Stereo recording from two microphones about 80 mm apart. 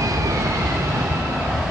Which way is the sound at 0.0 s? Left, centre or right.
Right.